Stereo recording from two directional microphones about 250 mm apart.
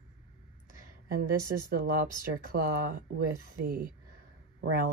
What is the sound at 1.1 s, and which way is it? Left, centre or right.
Speech, right.